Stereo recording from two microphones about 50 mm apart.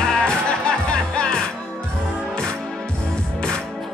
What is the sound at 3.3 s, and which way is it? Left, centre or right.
Music, centre.